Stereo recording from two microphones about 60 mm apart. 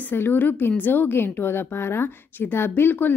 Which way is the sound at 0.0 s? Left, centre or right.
Left.